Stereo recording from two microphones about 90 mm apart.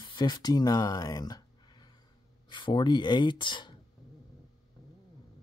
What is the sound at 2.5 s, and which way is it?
Speech, 60° left (ahead or behind).